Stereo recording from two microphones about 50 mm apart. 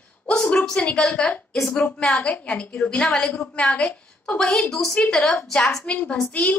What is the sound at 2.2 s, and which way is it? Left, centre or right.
A woman's voice, left.